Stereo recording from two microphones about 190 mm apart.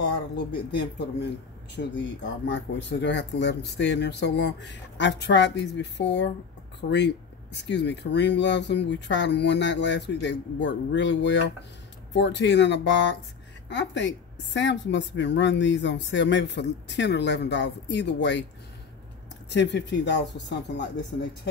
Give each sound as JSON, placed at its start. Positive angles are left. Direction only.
{"t": 0.7, "sound": "a woman's voice", "side_deg": 65}
{"t": 19.5, "sound": "a woman's voice", "side_deg": 65}